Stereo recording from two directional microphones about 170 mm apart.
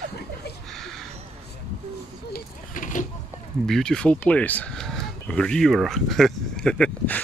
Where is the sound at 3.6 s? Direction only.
5° left (ahead or behind).